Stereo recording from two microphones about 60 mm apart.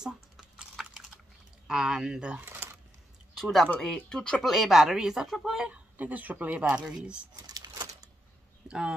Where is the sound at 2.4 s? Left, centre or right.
Right.